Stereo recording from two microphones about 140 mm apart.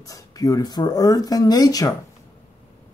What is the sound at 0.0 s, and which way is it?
Speech, 25° left (ahead or behind).